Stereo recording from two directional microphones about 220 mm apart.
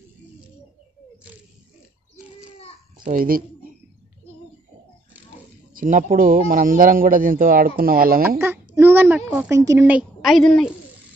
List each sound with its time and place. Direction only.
3.0 s a child's voice: 40° right (ahead or behind)
5.8 s speech: 40° right (ahead or behind)
8.4 s a sound: 10° right (ahead or behind)
9.2 s a woman's voice: 5° right (ahead or behind)